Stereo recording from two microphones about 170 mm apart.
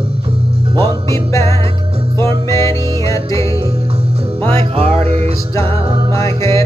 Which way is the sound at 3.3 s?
35° right (ahead or behind).